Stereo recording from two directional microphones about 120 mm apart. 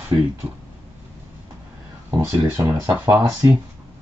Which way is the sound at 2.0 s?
20° right (ahead or behind).